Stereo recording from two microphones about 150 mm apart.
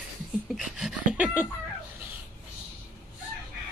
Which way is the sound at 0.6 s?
5° right (ahead or behind).